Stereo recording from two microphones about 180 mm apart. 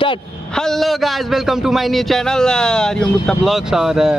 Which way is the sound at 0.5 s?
Centre (ahead or behind).